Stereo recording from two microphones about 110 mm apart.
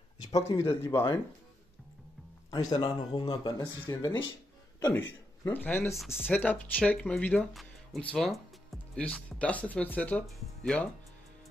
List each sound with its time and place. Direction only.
0.3 s speech: 25° left (ahead or behind)
2.8 s speech: 40° left (ahead or behind)
4.7 s speech: 20° left (ahead or behind)
5.9 s speech: 5° right (ahead or behind)
6.2 s speech: 15° left (ahead or behind)
8.1 s music: 5° left (ahead or behind)
9.0 s speech: 10° left (ahead or behind)